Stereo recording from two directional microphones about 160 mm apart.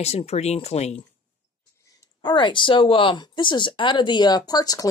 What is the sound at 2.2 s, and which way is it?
Speech, 30° left (ahead or behind).